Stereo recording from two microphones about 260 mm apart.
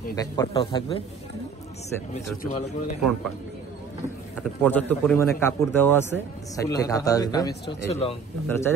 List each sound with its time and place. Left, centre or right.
0.1 s speech: centre
2.4 s speech: left
4.4 s speech: centre; by 8.2 s left
8.5 s speech: centre